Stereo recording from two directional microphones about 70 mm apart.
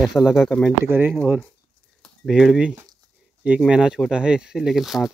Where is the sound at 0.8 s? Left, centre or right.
Right.